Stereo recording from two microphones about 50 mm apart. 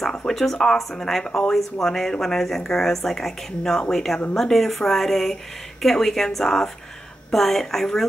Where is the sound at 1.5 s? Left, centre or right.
Centre.